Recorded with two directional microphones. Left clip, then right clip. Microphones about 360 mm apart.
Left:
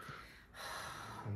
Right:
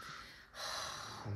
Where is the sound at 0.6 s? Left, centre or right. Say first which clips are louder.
Right 3 dB; right.